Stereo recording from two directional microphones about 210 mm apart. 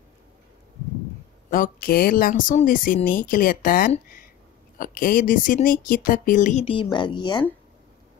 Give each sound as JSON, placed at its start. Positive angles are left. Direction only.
{"t": 1.5, "sound": "speech", "side_deg": 45}